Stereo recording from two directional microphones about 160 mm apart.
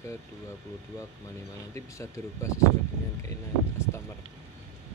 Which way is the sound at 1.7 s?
20° left (ahead or behind).